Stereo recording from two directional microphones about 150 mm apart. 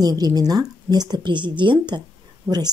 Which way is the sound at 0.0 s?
25° right (ahead or behind).